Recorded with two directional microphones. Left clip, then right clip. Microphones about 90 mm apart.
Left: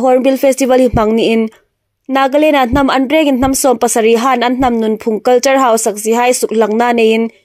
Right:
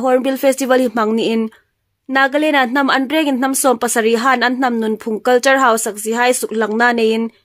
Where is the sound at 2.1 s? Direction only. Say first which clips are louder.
Left 4 dB; 45° left (ahead or behind).